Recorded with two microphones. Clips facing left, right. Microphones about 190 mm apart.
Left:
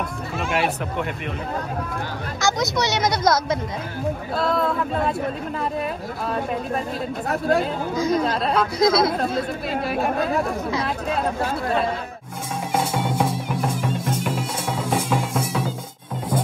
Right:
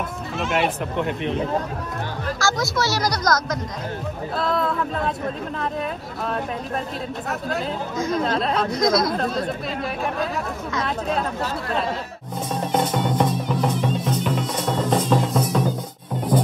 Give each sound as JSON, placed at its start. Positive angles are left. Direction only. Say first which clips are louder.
{"t": 0.5, "sound": "speech", "louder": "right 1 dB", "side_deg": 5}
{"t": 2.4, "sound": "speech", "louder": "left 2 dB", "side_deg": 20}
{"t": 4.4, "sound": "speech", "louder": "even", "side_deg": 0}
{"t": 8.2, "sound": "speech", "louder": "even", "side_deg": 0}
{"t": 8.7, "sound": "speech", "louder": "left 2 dB", "side_deg": 30}
{"t": 12.7, "sound": "music", "louder": "right 1 dB", "side_deg": 10}
{"t": 13.9, "sound": "music", "louder": "right 2 dB", "side_deg": 50}
{"t": 14.2, "sound": "music", "louder": "right 2 dB", "side_deg": 10}